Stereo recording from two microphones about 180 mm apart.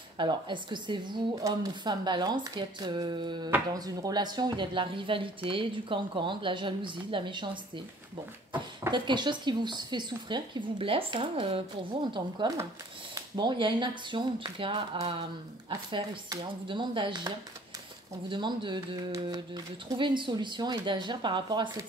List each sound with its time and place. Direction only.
0.2 s speech: 25° right (ahead or behind)
8.9 s speech: 25° right (ahead or behind)
18.3 s speech: 25° right (ahead or behind)